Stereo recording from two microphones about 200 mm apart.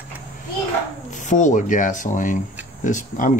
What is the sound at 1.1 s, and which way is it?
Speech, 40° left (ahead or behind).